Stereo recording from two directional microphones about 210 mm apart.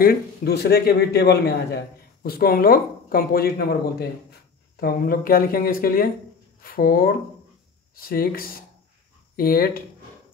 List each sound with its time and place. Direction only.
0.0 s a man's voice: 45° left (ahead or behind)
4.7 s a man's voice: 45° left (ahead or behind)